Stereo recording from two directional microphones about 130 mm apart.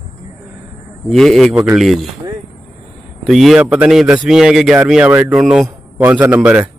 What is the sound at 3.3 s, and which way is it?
A man's voice, centre (ahead or behind).